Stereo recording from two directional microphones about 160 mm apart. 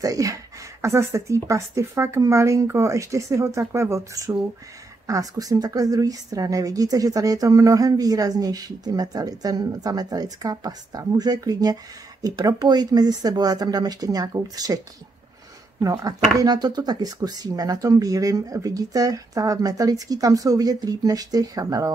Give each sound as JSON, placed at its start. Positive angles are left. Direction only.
{"t": 0.0, "sound": "a woman's voice", "side_deg": -20}
{"t": 15.8, "sound": "a woman's voice", "side_deg": -20}